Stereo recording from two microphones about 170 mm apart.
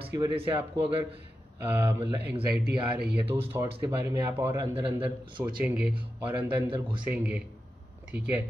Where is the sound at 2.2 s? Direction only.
70° right (ahead or behind).